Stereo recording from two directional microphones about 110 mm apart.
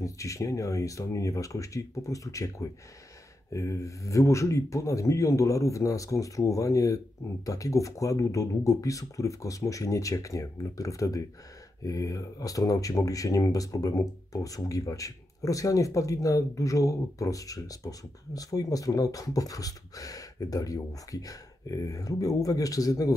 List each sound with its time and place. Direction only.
0.0 s speech: 30° left (ahead or behind)